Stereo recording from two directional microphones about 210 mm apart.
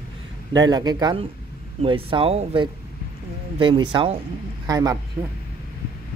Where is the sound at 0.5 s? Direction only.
20° right (ahead or behind).